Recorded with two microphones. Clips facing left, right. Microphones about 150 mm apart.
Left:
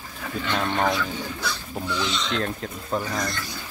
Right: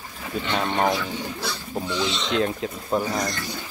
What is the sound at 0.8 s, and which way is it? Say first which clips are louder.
Speech: right 1 dB; 25° right (ahead or behind).